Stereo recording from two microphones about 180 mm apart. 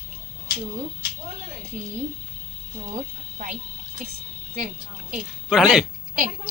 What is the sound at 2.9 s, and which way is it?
Speech, 45° right (ahead or behind).